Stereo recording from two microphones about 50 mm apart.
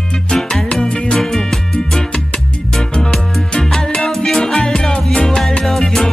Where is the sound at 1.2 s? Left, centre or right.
Centre.